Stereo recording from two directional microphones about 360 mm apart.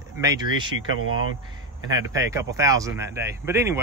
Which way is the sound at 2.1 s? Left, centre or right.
Centre.